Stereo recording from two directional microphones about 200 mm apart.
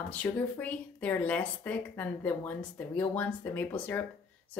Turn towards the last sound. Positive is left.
turn(degrees=10)  # may be behind; listen again after turning